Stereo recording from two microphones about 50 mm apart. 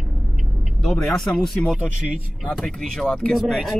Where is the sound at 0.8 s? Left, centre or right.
Centre.